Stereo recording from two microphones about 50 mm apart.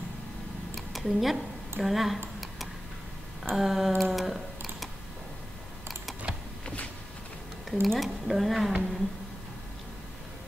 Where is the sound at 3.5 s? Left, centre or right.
Centre.